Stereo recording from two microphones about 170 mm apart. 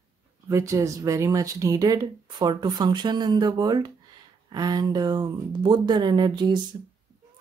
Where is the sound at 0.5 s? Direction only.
20° right (ahead or behind).